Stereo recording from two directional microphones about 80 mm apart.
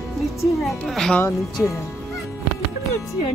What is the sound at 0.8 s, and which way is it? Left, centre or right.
Speech, centre.